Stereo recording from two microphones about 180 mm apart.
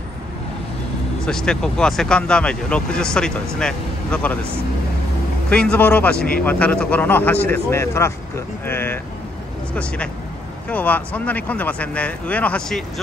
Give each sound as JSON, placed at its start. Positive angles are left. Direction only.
{"t": 1.2, "sound": "speech", "side_deg": 5}
{"t": 5.5, "sound": "speech", "side_deg": 5}
{"t": 6.1, "sound": "speech", "side_deg": 55}
{"t": 6.4, "sound": "speech", "side_deg": 10}